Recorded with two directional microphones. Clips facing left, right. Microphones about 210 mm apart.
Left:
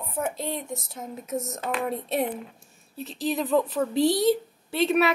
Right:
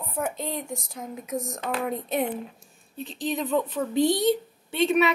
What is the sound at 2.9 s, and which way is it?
A woman's voice, centre (ahead or behind).